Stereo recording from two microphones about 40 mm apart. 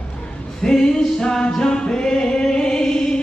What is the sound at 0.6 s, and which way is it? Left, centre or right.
Music, centre.